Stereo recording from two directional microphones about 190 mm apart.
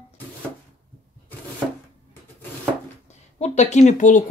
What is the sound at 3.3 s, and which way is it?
Speech, 35° left (ahead or behind).